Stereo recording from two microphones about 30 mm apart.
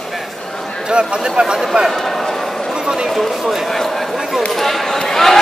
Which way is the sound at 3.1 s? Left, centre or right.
Centre.